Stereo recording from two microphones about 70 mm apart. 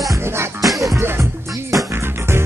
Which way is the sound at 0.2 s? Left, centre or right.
Right.